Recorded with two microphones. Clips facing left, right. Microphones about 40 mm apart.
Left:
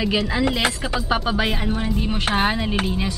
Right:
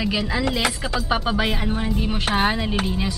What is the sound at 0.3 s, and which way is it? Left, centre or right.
A woman's voice, centre.